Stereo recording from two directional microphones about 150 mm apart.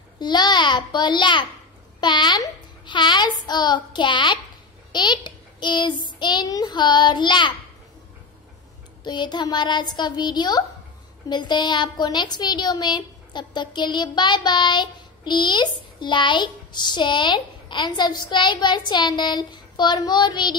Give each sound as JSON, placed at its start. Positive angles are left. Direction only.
{"t": 0.2, "sound": "a child's voice", "side_deg": 30}
{"t": 6.1, "sound": "child singing", "side_deg": 30}
{"t": 9.0, "sound": "child singing", "side_deg": 30}
{"t": 11.2, "sound": "speech", "side_deg": 30}
{"t": 18.9, "sound": "child singing", "side_deg": 30}